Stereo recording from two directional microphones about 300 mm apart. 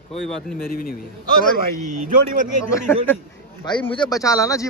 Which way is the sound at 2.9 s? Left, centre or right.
Centre.